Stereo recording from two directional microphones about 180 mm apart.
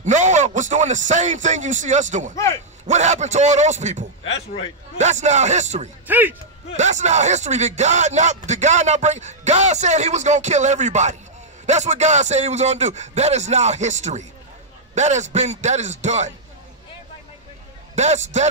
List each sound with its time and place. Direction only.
0.0 s a man's voice: 45° right (ahead or behind)
2.3 s a man's voice: 15° left (ahead or behind)
2.9 s speech: 40° right (ahead or behind)
6.0 s speech: 10° right (ahead or behind)
6.8 s speech: 40° right (ahead or behind)
17.9 s speech: 40° right (ahead or behind)